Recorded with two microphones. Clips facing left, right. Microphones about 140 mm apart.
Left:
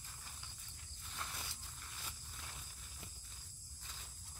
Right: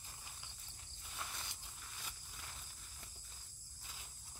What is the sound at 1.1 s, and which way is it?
Walk, 10° right (ahead or behind).